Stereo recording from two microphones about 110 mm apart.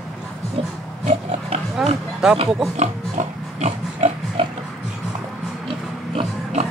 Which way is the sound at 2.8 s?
90° right.